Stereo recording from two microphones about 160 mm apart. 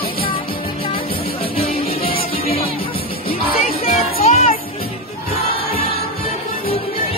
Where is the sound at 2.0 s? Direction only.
35° left (ahead or behind).